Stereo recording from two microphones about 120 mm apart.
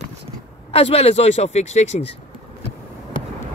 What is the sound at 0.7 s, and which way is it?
Speech, 55° left (ahead or behind).